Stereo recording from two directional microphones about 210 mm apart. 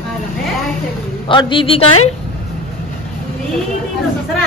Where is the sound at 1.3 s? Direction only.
25° left (ahead or behind).